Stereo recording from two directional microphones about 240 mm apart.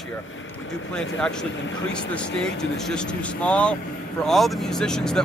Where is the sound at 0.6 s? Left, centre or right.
Left.